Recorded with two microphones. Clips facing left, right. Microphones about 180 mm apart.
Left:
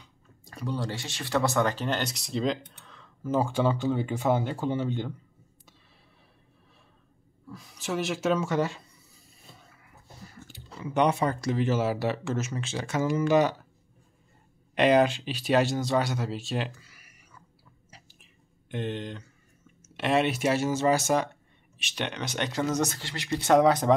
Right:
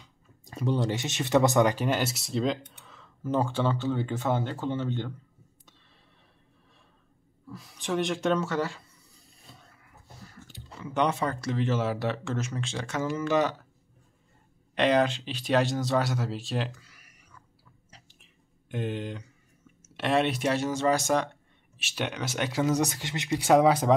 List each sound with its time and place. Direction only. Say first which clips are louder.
0.5 s speech: right 5 dB; 20° right (ahead or behind); by 5.1 s 10° left (ahead or behind)
7.4 s speech: right 1 dB; centre (ahead or behind)
8.5 s speech: left 2 dB; 20° left (ahead or behind)
9.6 s speech: left 1 dB; 5° left (ahead or behind)
14.8 s speech: left 2 dB; 10° left (ahead or behind)
17.9 s whispering: left 2 dB; 5° left (ahead or behind)
18.7 s speech: even; 5° right (ahead or behind)
20.0 s speech: left 1 dB; centre (ahead or behind)
21.7 s speech: right 1 dB; 5° right (ahead or behind)